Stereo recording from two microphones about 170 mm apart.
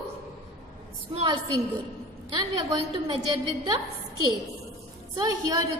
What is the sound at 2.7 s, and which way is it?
A woman's voice, 25° right (ahead or behind).